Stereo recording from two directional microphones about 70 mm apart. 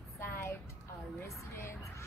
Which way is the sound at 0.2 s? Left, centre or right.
Left.